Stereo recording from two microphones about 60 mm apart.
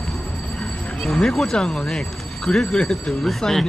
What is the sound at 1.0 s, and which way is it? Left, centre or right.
Speech, centre.